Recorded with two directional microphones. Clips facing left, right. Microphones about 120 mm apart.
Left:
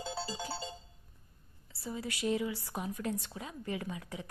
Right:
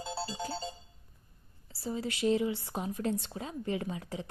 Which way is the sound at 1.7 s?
30° right (ahead or behind).